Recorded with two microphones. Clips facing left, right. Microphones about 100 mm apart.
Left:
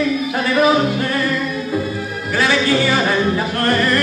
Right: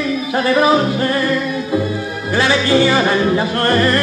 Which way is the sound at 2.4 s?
25° right (ahead or behind).